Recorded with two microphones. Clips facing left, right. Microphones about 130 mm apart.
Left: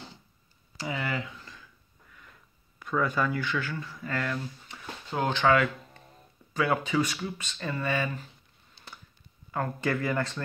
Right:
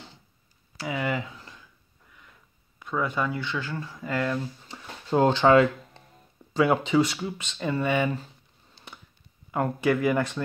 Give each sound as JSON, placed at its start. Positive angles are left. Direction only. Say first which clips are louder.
{"t": 0.7, "sound": "speech", "louder": "right 3 dB", "side_deg": -5}
{"t": 2.8, "sound": "speech", "louder": "even", "side_deg": -20}
{"t": 4.0, "sound": "speech", "louder": "right 5 dB", "side_deg": -20}
{"t": 4.6, "sound": "speech", "louder": "right 7 dB", "side_deg": -30}
{"t": 9.5, "sound": "speech", "louder": "right 5 dB", "side_deg": -15}